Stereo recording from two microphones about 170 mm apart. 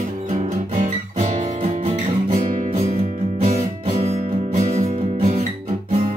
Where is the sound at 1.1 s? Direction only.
45° right (ahead or behind).